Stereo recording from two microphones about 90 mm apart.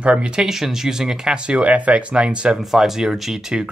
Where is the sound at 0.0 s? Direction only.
10° right (ahead or behind).